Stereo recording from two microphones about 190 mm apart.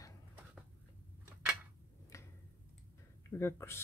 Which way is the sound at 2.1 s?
15° left (ahead or behind).